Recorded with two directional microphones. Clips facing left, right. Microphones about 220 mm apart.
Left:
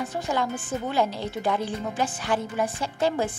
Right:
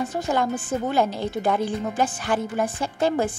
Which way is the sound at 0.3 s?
50° right (ahead or behind).